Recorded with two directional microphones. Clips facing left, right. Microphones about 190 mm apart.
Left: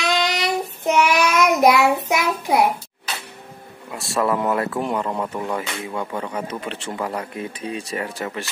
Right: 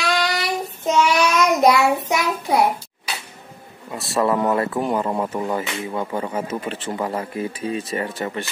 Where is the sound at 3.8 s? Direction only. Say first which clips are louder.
Right 1 dB; centre (ahead or behind).